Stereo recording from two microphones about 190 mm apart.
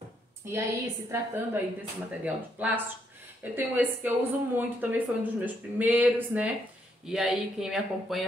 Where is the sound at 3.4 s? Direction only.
10° right (ahead or behind).